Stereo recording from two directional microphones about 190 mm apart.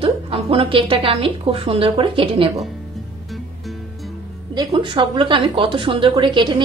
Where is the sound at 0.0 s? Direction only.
30° right (ahead or behind).